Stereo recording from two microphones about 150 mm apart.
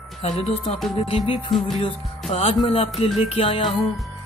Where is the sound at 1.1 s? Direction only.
40° left (ahead or behind).